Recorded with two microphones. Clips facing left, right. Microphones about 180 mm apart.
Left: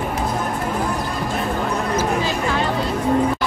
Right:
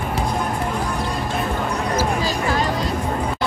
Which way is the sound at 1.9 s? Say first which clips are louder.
Even; 35° right (ahead or behind).